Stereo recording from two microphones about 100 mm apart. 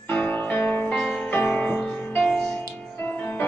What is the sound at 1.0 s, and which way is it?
Music, 5° left (ahead or behind).